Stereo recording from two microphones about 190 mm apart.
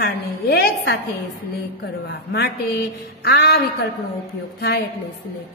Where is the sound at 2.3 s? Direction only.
60° left (ahead or behind).